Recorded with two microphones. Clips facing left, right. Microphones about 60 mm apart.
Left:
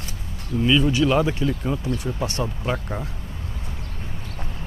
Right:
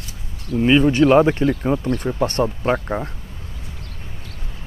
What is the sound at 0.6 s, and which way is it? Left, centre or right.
Speech, right.